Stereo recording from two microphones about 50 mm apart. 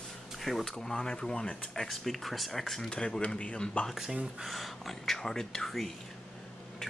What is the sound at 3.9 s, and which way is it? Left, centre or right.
Speech, centre.